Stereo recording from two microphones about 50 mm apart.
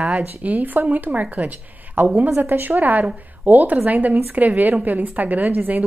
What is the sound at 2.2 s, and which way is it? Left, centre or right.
Speech, right.